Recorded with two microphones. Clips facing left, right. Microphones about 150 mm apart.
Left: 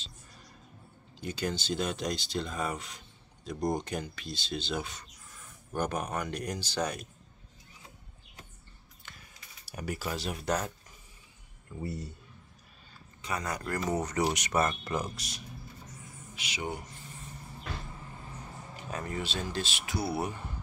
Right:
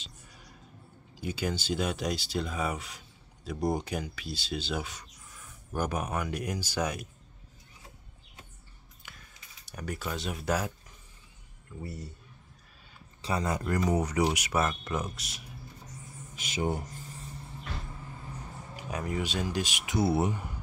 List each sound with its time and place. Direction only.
0.0 s a sound: 10° right (ahead or behind)
1.1 s speech: 10° right (ahead or behind)
9.0 s a sound: 10° right (ahead or behind)
9.7 s speech: 5° left (ahead or behind)
13.2 s speech: 25° right (ahead or behind); by 15.4 s centre (ahead or behind)
16.3 s speech: 45° right (ahead or behind)
18.8 s speech: 10° right (ahead or behind)